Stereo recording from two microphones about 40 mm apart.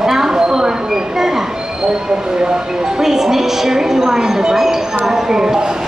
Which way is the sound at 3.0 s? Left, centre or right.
Centre.